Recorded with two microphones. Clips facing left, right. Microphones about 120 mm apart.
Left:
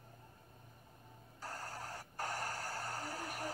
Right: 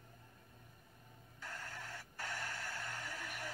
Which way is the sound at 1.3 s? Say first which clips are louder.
Left 3 dB; 40° left (ahead or behind).